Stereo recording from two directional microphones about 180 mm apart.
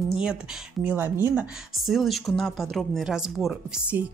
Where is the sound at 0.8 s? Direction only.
10° right (ahead or behind).